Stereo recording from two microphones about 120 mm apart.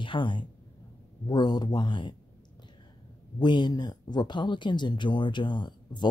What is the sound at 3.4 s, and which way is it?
Speech, 40° left (ahead or behind).